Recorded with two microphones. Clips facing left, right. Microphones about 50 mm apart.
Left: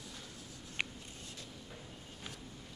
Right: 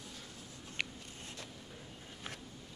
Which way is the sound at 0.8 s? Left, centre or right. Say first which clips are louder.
Left 1 dB; centre.